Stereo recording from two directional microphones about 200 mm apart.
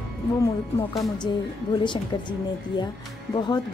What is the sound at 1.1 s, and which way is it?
A woman's voice, 20° left (ahead or behind).